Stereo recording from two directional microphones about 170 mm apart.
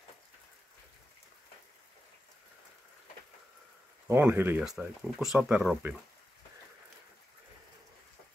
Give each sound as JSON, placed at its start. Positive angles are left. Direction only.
{"t": 4.1, "sound": "speech", "side_deg": -10}